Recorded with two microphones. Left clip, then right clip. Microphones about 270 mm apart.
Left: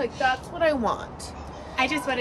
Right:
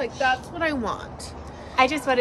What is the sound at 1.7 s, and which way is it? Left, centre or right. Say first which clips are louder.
Speech: right 5 dB; centre.